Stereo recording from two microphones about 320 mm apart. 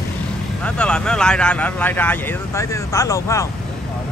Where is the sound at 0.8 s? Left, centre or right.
Centre.